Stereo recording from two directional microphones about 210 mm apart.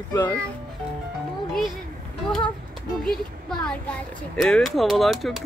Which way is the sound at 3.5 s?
5° left (ahead or behind).